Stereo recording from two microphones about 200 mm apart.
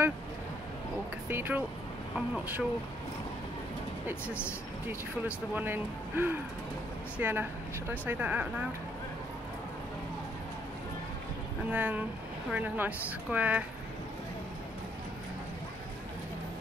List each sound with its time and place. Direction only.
1.3 s a woman's voice: 10° right (ahead or behind)
4.3 s speech: 10° left (ahead or behind)
5.5 s a woman's voice: 10° right (ahead or behind)
11.7 s a woman's voice: 10° right (ahead or behind)